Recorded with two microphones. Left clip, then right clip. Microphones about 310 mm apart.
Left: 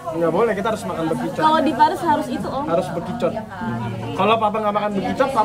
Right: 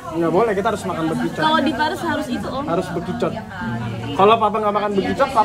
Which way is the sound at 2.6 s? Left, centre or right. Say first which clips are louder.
Left 2 dB; centre.